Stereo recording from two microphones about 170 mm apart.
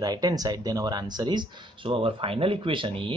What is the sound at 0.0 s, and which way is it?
Speech, 25° right (ahead or behind).